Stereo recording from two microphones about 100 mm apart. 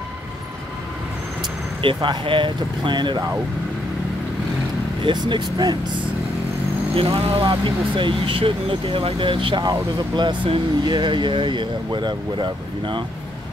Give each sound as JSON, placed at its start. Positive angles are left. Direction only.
{"t": 1.8, "sound": "speech", "side_deg": -55}
{"t": 5.0, "sound": "speech", "side_deg": -50}
{"t": 7.0, "sound": "speech", "side_deg": -65}